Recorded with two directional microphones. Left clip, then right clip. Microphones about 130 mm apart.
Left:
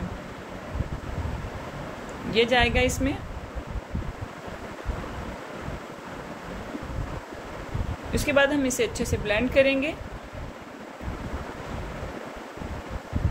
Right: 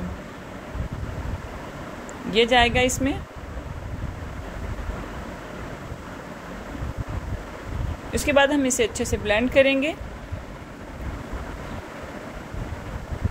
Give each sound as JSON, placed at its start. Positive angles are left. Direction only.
{"t": 2.3, "sound": "a woman's voice", "side_deg": -30}
{"t": 8.1, "sound": "a woman's voice", "side_deg": -35}